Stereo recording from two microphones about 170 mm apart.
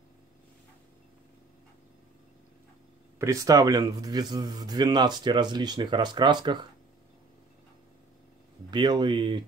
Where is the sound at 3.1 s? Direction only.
20° right (ahead or behind).